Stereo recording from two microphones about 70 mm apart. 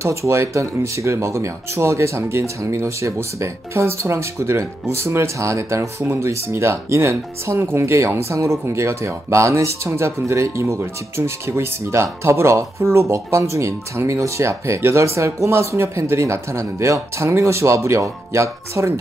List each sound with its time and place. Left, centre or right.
0.0 s speech: right